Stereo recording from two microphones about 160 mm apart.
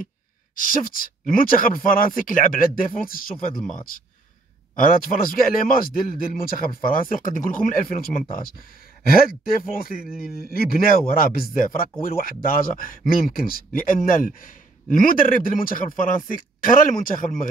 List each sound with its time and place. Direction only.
0.6 s speech: 60° left (ahead or behind)
4.7 s speech: 60° left (ahead or behind)
10.0 s speech: 5° right (ahead or behind)
10.4 s speech: 70° left (ahead or behind)